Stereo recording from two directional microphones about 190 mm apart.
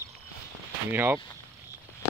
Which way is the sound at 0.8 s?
10° right (ahead or behind).